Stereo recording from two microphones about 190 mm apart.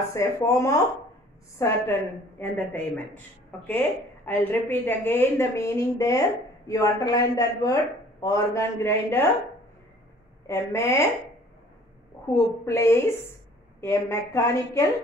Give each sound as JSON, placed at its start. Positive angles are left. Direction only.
{"t": 0.1, "sound": "speech", "side_deg": 15}
{"t": 10.4, "sound": "speech", "side_deg": 15}
{"t": 12.6, "sound": "speech", "side_deg": 15}